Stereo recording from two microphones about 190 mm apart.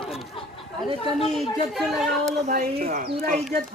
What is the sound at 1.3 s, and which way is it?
Speech, centre (ahead or behind).